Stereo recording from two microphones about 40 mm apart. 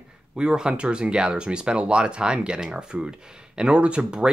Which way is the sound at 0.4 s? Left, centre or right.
Centre.